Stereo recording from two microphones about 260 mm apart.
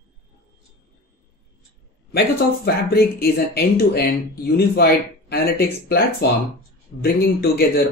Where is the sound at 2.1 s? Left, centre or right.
Left.